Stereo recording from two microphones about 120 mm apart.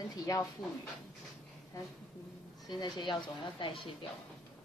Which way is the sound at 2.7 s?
35° left (ahead or behind).